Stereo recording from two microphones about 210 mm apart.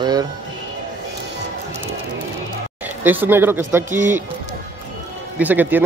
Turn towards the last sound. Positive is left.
turn(degrees=-10)  # may be behind; listen again after turning